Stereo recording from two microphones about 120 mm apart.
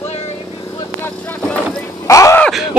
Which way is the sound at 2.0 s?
25° left (ahead or behind).